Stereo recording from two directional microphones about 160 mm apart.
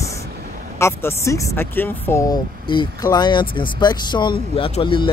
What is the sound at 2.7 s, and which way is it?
Speech, 25° left (ahead or behind).